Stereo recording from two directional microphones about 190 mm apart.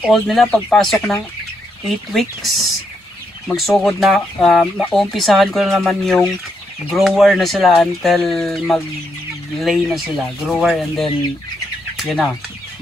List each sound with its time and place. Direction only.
0.0 s speech: centre (ahead or behind)